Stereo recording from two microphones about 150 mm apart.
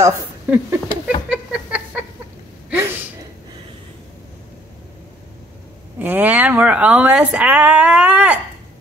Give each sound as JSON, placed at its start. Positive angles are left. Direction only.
{"t": 0.0, "sound": "speech", "side_deg": -20}
{"t": 1.3, "sound": "a sound", "side_deg": -10}
{"t": 2.7, "sound": "gasp", "side_deg": -15}
{"t": 5.9, "sound": "a woman's voice", "side_deg": -10}